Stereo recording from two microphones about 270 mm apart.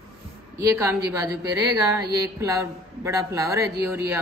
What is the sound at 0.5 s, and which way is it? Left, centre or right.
A man's voice, centre.